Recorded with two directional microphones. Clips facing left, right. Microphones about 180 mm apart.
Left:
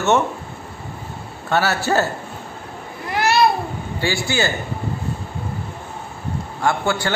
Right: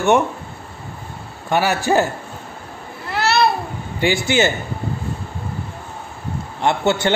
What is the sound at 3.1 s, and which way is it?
Babbling, 15° left (ahead or behind).